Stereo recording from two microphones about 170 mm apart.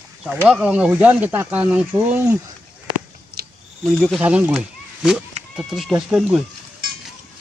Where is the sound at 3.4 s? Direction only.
65° right (ahead or behind).